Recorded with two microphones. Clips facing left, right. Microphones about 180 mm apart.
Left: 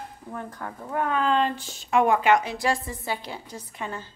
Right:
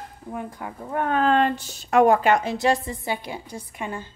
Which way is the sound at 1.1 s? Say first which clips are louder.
Right 5 dB; 55° right (ahead or behind).